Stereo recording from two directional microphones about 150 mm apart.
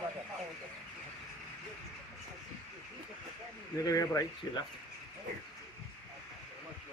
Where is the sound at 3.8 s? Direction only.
25° left (ahead or behind).